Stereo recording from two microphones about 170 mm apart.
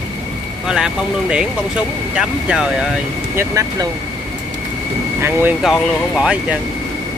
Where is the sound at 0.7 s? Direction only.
5° right (ahead or behind).